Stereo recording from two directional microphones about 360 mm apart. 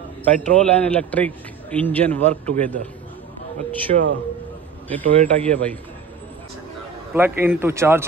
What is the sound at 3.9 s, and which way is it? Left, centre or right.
Speech, right.